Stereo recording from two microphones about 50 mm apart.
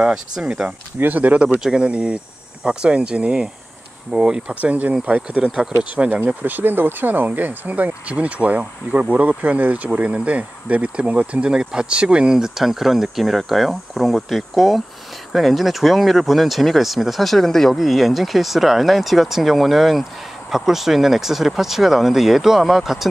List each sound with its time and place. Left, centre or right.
0.0 s speech: centre
0.9 s speech: right
1.6 s speech: centre
6.2 s speech: right; by 23.0 s centre